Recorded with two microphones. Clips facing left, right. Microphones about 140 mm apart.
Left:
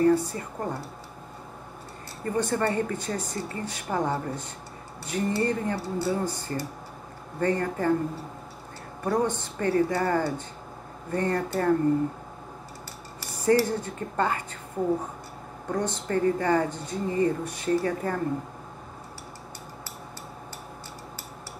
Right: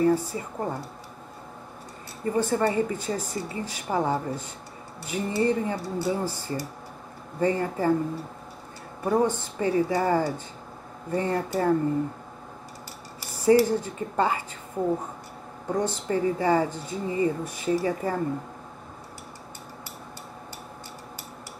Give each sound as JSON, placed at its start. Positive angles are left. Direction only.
{"t": 0.0, "sound": "speech", "side_deg": -10}
{"t": 2.2, "sound": "speech", "side_deg": -10}
{"t": 9.0, "sound": "speech", "side_deg": -10}
{"t": 13.5, "sound": "speech", "side_deg": -10}
{"t": 15.7, "sound": "speech", "side_deg": -10}